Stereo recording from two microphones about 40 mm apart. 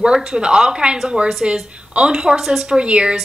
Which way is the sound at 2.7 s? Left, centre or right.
Right.